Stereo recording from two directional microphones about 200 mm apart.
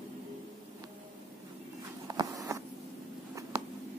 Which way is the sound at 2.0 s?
15° right (ahead or behind).